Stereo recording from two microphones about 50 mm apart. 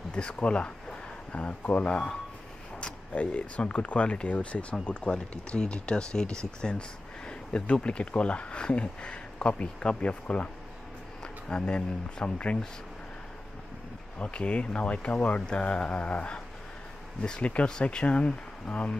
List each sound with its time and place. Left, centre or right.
0.1 s speech: centre
14.2 s speech: left